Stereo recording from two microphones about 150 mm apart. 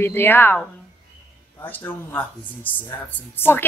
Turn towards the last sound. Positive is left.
turn(degrees=15)  # may be behind; listen again after turning